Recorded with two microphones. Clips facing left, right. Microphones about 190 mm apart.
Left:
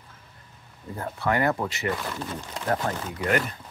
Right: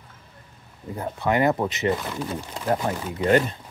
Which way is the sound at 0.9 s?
20° right (ahead or behind).